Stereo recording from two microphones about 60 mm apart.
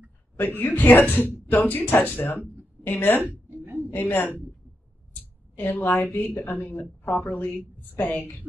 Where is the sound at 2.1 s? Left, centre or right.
Left.